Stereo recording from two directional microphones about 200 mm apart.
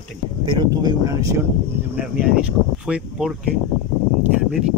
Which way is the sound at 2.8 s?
5° right (ahead or behind).